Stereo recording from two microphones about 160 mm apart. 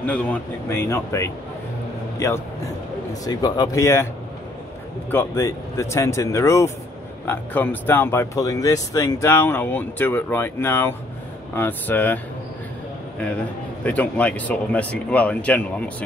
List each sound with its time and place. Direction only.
0.0 s speech: 10° left (ahead or behind)
5.1 s speech: 15° left (ahead or behind)
13.8 s speech: 10° left (ahead or behind)